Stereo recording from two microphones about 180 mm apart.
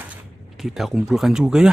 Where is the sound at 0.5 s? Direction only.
Centre (ahead or behind).